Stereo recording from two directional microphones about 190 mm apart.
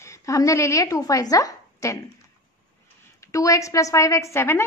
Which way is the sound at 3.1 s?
15° left (ahead or behind).